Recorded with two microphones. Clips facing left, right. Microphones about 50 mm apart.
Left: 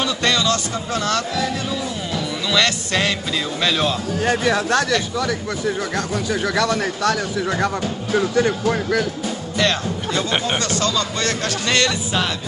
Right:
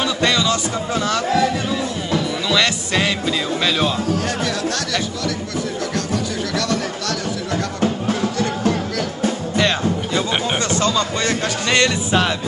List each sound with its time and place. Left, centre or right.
0.0 s music: centre
4.3 s music: left
6.5 s speech: centre
9.6 s music: centre
10.7 s speech: right